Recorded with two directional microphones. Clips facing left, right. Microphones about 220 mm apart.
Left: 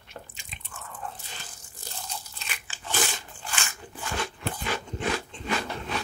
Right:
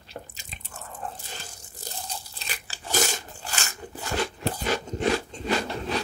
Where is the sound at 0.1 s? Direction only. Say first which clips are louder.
Right 4 dB; 40° right (ahead or behind).